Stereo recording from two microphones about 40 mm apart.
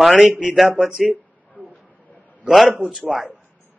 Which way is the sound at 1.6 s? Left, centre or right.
Right.